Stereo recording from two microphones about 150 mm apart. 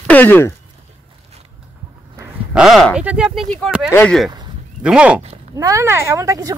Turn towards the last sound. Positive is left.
turn(degrees=-20)  # may be behind; listen again after turning